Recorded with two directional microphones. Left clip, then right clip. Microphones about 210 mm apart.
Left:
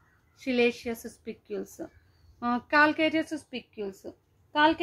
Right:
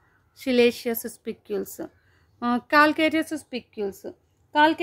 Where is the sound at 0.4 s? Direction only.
50° right (ahead or behind).